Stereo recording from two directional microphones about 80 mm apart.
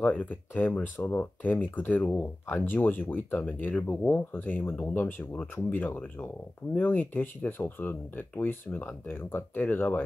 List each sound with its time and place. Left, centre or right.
0.0 s speech: centre